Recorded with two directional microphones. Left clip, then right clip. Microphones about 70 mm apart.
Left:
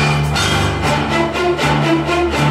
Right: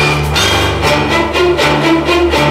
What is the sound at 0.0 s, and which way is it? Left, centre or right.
Music, right.